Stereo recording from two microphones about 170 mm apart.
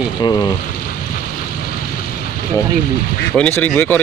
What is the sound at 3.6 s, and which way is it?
Speech, 10° left (ahead or behind).